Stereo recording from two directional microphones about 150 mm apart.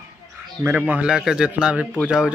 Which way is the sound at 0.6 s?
15° right (ahead or behind).